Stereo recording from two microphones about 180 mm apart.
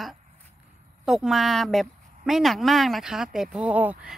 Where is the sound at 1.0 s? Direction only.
Centre (ahead or behind).